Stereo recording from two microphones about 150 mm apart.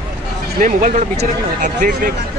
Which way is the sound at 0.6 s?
60° right (ahead or behind).